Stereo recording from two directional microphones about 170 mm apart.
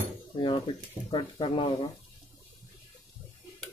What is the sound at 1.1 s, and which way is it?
Speech, 30° left (ahead or behind).